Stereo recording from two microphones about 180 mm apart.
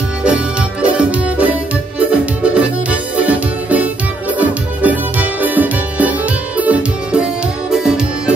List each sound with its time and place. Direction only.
0.2 s music: 5° right (ahead or behind)